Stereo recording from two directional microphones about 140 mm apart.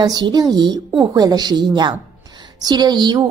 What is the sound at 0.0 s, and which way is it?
A woman's voice, 30° right (ahead or behind).